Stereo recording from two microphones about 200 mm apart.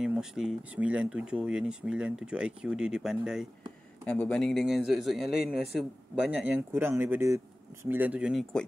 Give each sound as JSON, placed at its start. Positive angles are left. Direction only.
{"t": 0.0, "sound": "a man's voice", "side_deg": -5}